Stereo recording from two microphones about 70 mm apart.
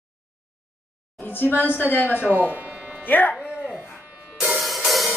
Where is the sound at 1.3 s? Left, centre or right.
Left.